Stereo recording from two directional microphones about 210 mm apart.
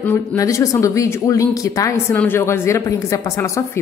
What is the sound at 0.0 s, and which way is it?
Speech, 10° left (ahead or behind).